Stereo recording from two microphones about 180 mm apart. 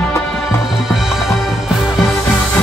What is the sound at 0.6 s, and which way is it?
Music, centre (ahead or behind).